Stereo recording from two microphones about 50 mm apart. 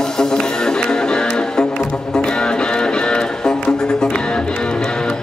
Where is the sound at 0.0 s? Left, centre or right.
Centre.